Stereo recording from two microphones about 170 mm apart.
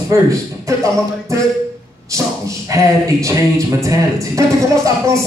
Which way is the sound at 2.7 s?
20° right (ahead or behind).